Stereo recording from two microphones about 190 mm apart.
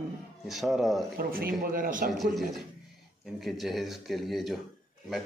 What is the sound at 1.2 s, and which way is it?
Speech, 50° right (ahead or behind).